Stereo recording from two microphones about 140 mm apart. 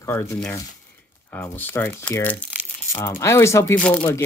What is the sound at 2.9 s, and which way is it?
Speech, 20° left (ahead or behind).